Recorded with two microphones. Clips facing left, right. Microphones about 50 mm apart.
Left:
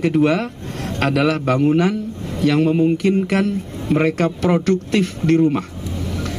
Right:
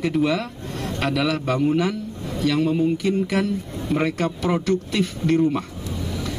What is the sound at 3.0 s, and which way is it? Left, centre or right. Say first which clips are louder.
Speech: left 4 dB; left.